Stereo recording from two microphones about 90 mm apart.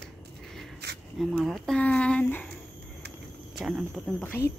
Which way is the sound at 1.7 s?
15° left (ahead or behind).